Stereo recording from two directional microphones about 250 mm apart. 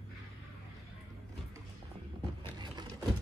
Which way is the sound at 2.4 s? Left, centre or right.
Centre.